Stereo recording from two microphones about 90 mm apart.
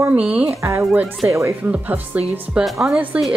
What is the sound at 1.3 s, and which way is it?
Speech, 35° right (ahead or behind).